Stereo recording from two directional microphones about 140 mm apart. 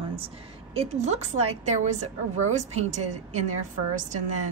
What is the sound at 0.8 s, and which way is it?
A woman's voice, 50° right (ahead or behind).